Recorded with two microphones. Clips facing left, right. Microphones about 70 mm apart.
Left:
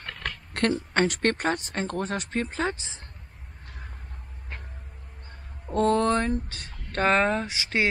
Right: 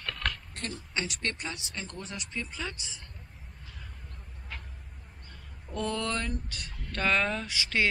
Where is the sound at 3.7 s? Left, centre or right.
Left.